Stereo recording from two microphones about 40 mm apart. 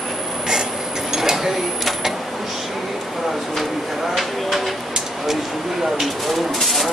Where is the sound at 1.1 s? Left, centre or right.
Centre.